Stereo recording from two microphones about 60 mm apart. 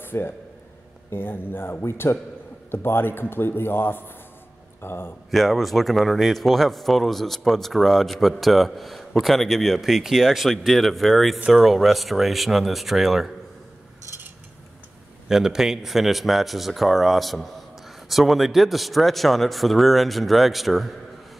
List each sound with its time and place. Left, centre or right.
0.0 s a sound: left
1.1 s speech: left
5.3 s speech: centre
15.2 s speech: centre